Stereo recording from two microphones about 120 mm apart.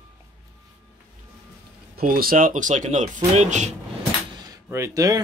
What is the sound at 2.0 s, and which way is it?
Speech, 90° right.